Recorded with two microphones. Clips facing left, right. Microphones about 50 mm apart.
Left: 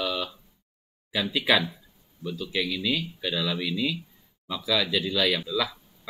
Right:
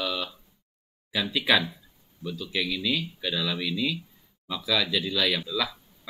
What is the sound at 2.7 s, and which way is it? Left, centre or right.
Speech, centre.